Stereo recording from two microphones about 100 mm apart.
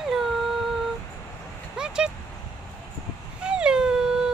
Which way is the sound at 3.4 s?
10° right (ahead or behind).